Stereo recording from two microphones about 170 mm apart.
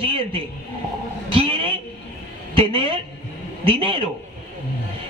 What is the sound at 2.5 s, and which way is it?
A man's voice, 35° right (ahead or behind).